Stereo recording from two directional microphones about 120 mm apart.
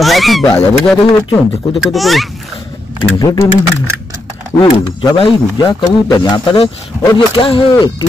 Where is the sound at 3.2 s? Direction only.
30° left (ahead or behind).